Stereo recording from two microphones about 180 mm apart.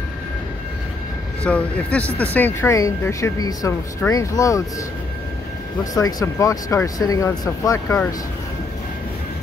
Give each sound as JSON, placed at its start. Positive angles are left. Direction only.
{"t": 1.4, "sound": "speech", "side_deg": 5}
{"t": 5.9, "sound": "speech", "side_deg": 20}